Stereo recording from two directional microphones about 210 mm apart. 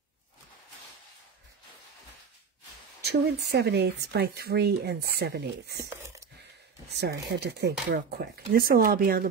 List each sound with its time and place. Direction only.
3.0 s speech: 50° right (ahead or behind)
5.9 s a sound: 15° right (ahead or behind)
6.9 s speech: 55° right (ahead or behind)